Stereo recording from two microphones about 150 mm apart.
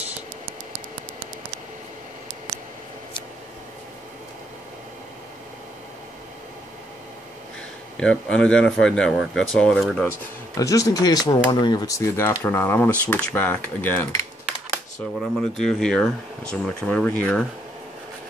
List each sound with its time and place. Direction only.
8.0 s speech: 5° left (ahead or behind)
10.6 s speech: 20° left (ahead or behind)
15.1 s speech: 5° left (ahead or behind)